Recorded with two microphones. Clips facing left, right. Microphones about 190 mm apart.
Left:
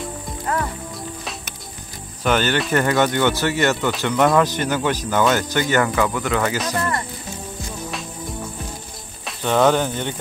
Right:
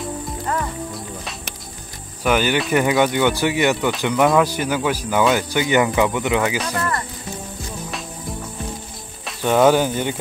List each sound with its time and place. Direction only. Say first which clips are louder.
0.5 s music: left 1 dB; centre (ahead or behind)
2.2 s speech: right 1 dB; 10° right (ahead or behind)
9.2 s speech: right 2 dB; 10° right (ahead or behind)